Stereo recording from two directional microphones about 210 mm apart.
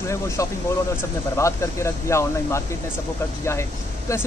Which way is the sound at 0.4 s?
15° left (ahead or behind).